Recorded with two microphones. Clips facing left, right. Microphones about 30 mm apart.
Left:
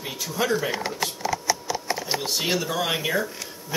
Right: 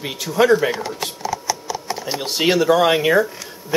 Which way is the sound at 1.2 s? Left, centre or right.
Centre.